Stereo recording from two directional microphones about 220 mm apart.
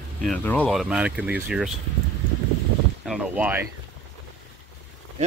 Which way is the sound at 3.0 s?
5° right (ahead or behind).